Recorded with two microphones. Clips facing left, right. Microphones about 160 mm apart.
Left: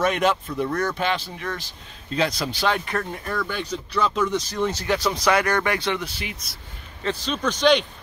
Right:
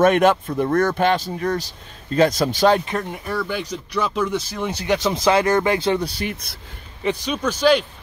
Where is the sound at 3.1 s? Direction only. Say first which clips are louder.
Right 3 dB; 10° right (ahead or behind); by 6.3 s 35° right (ahead or behind).